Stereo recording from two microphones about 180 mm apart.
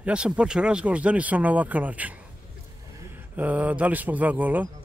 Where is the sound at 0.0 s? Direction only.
5° right (ahead or behind).